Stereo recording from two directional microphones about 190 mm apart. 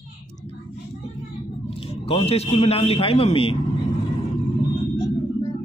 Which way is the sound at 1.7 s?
30° left (ahead or behind).